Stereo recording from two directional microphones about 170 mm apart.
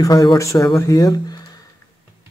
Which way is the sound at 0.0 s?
20° left (ahead or behind).